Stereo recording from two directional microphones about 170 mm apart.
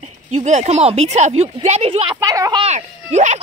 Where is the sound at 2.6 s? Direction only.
40° right (ahead or behind).